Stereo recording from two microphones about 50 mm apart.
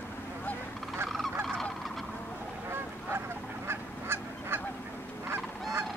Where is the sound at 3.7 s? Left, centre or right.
Right.